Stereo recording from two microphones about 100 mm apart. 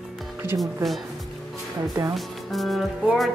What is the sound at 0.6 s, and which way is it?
Speech, centre (ahead or behind).